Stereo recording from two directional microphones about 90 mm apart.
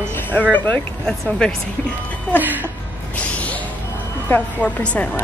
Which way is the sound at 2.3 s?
20° right (ahead or behind).